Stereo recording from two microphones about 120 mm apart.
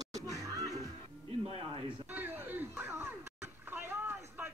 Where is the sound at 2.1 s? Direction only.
15° right (ahead or behind).